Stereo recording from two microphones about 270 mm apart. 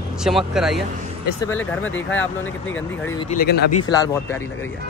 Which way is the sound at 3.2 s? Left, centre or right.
Left.